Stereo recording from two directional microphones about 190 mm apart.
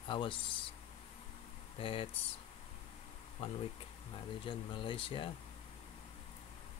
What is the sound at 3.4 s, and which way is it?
Speech, 30° left (ahead or behind).